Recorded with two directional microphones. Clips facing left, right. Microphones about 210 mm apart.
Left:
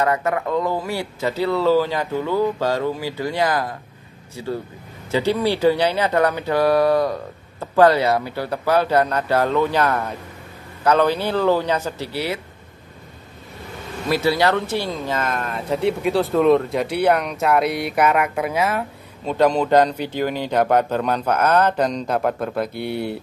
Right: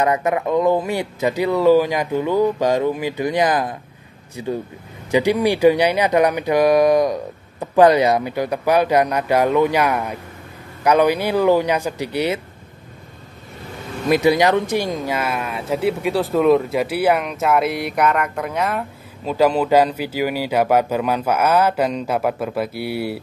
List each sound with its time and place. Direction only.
0.0 s speech: 20° right (ahead or behind)
5.1 s speech: 15° right (ahead or behind)
14.0 s speech: 15° right (ahead or behind)